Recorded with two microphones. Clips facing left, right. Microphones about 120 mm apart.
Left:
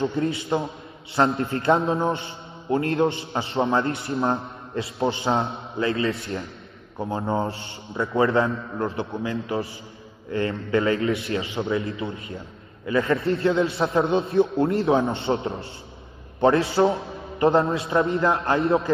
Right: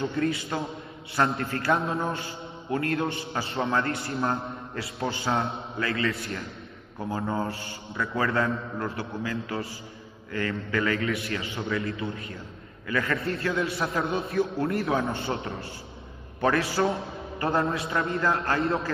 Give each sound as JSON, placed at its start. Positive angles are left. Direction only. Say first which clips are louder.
{"t": 0.0, "sound": "a man's voice", "louder": "left 3 dB", "side_deg": 25}